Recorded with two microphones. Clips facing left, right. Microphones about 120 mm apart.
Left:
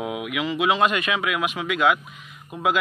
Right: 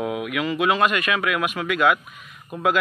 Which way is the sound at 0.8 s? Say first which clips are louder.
Even; 25° left (ahead or behind).